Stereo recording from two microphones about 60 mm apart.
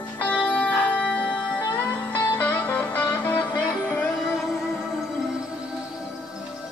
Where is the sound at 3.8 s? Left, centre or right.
Left.